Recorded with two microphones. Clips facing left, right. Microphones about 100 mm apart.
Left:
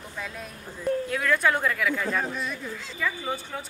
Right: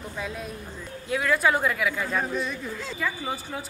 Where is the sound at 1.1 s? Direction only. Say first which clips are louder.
Right 5 dB; 5° right (ahead or behind).